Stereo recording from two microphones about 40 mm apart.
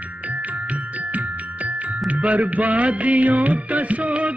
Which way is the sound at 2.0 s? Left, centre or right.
Right.